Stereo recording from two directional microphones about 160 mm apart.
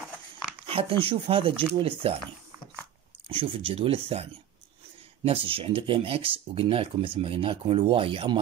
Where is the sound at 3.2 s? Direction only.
35° right (ahead or behind).